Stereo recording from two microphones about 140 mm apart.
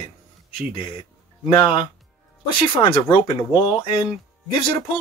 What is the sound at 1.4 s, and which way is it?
Speech, 35° left (ahead or behind).